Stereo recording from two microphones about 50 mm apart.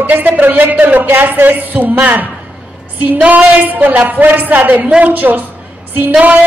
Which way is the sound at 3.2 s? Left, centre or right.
Right.